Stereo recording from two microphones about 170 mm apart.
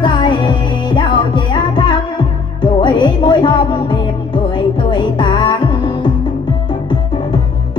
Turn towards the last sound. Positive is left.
turn(degrees=30)  # may be behind; listen again after turning